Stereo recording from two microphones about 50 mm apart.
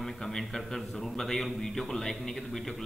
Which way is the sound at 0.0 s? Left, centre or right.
Centre.